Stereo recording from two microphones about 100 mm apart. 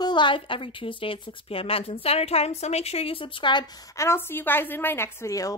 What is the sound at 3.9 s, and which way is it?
A woman's voice, 25° left (ahead or behind).